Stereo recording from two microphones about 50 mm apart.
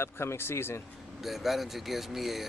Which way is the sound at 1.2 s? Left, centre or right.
Centre.